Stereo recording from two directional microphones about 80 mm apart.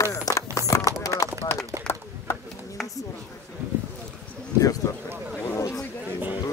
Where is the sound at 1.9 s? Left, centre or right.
Centre.